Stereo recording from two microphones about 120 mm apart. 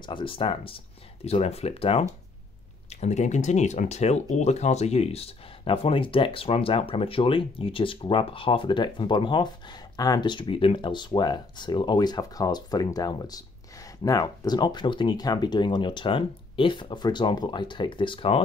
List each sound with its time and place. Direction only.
0.0 s speech: 45° left (ahead or behind)
1.2 s speech: 60° left (ahead or behind)
2.9 s speech: 70° left (ahead or behind); by 18.4 s 45° left (ahead or behind)